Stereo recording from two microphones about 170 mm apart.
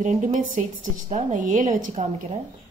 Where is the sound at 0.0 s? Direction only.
50° right (ahead or behind).